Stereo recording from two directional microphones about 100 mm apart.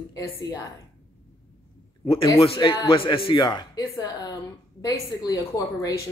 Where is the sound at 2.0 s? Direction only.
65° left (ahead or behind).